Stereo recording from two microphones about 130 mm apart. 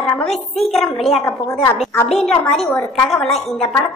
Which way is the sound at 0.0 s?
10° left (ahead or behind).